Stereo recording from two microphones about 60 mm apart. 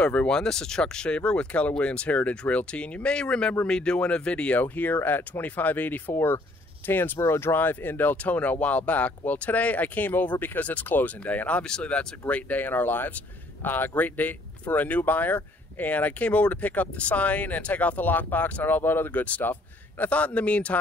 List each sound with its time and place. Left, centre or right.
0.0 s speech: left
0.3 s speech: centre; by 6.1 s left
6.1 s a man's voice: left